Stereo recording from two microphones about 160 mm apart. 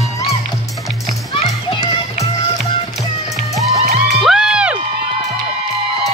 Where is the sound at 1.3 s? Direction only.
35° left (ahead or behind).